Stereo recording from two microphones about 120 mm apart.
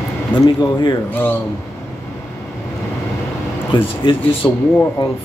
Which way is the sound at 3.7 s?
40° left (ahead or behind).